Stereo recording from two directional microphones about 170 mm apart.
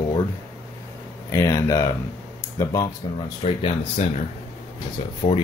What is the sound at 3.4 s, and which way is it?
Speech, 35° left (ahead or behind).